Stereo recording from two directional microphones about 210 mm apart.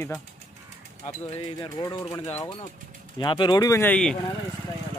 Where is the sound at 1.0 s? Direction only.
25° left (ahead or behind); by 4.2 s 5° left (ahead or behind).